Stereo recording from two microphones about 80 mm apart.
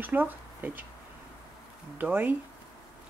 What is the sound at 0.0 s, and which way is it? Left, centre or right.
Speech, right.